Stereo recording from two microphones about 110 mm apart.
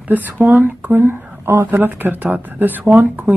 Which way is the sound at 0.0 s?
15° right (ahead or behind).